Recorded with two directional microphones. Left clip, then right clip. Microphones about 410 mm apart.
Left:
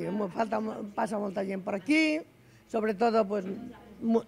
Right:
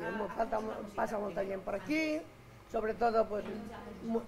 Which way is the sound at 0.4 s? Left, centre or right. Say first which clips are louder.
Left 4 dB; left.